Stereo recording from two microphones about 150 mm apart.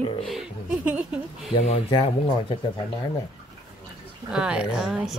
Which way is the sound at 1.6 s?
40° left (ahead or behind).